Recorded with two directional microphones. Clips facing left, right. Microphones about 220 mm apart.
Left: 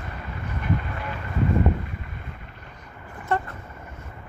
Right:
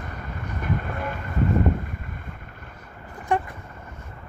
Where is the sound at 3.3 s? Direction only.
15° right (ahead or behind).